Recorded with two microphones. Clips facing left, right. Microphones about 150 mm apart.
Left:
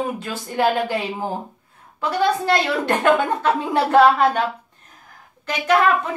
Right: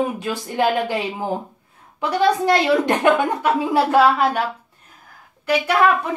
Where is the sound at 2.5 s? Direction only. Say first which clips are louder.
Right 3 dB; 15° right (ahead or behind).